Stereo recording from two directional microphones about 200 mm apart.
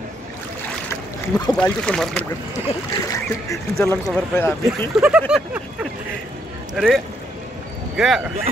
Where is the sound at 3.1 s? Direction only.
15° left (ahead or behind).